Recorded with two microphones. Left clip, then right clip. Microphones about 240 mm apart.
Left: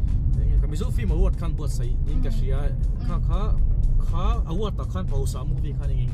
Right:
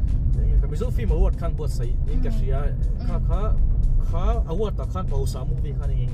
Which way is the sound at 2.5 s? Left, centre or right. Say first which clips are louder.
Right 2 dB; left.